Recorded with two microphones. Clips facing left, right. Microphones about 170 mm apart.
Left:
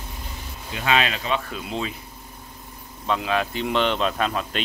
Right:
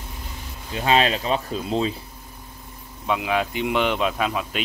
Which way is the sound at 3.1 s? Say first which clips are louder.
Right 1 dB; 15° right (ahead or behind).